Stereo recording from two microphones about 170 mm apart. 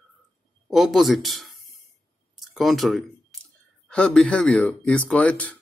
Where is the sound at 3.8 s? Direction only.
5° left (ahead or behind).